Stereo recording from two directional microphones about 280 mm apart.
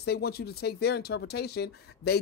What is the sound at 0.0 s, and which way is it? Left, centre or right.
Speech, left.